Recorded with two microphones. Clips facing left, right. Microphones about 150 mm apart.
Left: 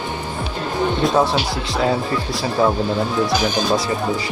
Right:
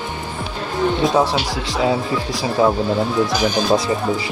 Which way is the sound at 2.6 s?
10° right (ahead or behind).